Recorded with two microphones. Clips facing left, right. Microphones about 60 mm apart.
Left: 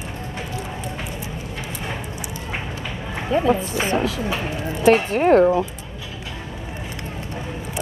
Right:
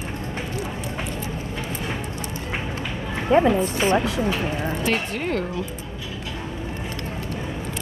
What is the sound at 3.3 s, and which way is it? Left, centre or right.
Speech, right.